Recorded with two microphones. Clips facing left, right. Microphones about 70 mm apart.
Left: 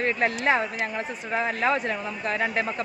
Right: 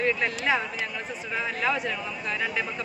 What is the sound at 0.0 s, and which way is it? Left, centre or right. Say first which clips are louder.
Speech: left 2 dB; left.